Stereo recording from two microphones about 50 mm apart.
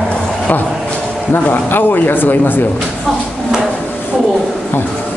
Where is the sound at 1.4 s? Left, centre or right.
Left.